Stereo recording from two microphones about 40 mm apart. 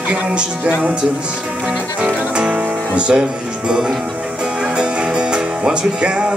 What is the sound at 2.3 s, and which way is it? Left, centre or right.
Music, right.